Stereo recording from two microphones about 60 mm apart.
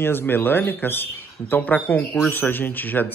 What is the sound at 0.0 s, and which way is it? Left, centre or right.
A woman's voice, left.